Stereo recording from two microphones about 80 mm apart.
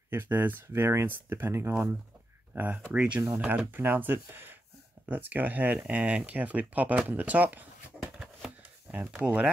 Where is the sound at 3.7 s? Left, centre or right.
Right.